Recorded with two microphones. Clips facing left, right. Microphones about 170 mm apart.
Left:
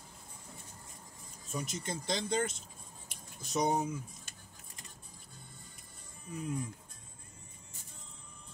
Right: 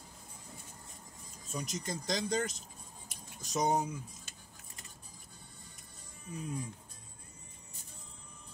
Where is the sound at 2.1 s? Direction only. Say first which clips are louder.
Even; 40° right (ahead or behind).